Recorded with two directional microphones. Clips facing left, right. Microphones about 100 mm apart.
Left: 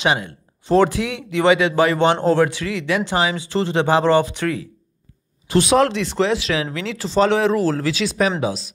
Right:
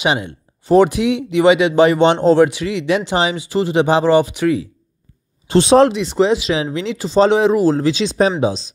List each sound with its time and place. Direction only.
0.0 s speech: 20° right (ahead or behind)
5.5 s speech: 30° right (ahead or behind)
5.9 s speech: 15° right (ahead or behind)